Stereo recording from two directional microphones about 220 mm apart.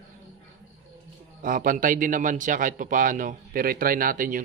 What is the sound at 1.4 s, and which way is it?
A man's voice, 40° right (ahead or behind).